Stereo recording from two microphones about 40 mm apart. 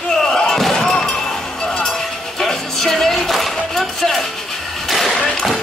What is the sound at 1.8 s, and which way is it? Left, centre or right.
Music, centre.